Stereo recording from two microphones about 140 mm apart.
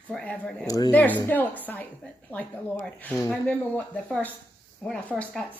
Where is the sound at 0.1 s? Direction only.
5° left (ahead or behind).